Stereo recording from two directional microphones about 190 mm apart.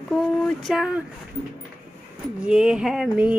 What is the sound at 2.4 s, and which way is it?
Speech, 5° right (ahead or behind).